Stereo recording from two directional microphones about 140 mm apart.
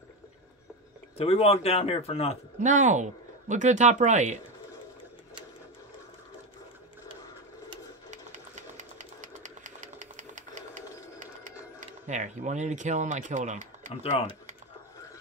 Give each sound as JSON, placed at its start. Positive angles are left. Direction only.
{"t": 1.1, "sound": "speech", "side_deg": 45}
{"t": 2.6, "sound": "speech", "side_deg": -60}
{"t": 8.1, "sound": "sewing machine", "side_deg": -60}